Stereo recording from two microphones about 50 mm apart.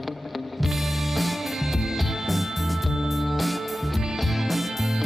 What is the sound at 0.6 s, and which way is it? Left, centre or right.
Music, centre.